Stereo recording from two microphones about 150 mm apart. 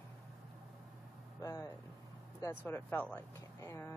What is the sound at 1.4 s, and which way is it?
Speech, 20° left (ahead or behind).